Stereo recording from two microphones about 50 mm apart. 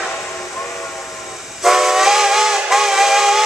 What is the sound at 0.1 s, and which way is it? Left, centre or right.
Steam, left.